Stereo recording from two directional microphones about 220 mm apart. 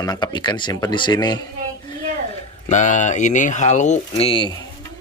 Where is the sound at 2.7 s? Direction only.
35° left (ahead or behind).